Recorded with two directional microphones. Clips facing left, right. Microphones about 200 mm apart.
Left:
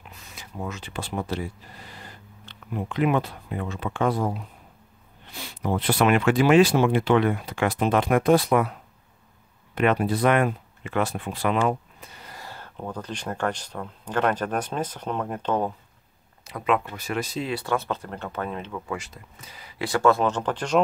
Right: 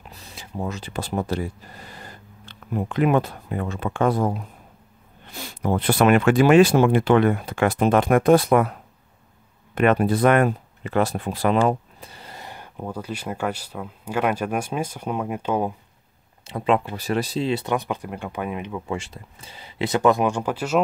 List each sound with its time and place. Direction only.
0.1 s speech: 30° right (ahead or behind); by 8.7 s 50° right (ahead or behind)
9.8 s speech: 50° right (ahead or behind); by 15.7 s 10° right (ahead or behind)
16.4 s speech: 30° right (ahead or behind)
18.9 s speech: 30° right (ahead or behind); by 20.8 s 5° right (ahead or behind)